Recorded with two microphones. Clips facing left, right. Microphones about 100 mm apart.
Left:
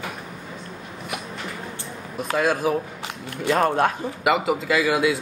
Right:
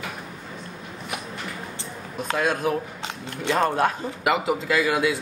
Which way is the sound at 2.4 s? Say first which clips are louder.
Left 3 dB; centre (ahead or behind).